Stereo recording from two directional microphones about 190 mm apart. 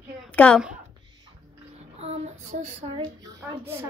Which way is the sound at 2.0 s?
35° right (ahead or behind).